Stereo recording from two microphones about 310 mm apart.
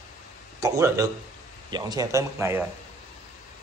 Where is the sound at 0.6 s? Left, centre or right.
Centre.